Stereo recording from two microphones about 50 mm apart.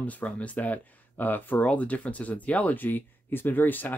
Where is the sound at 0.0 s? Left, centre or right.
Left.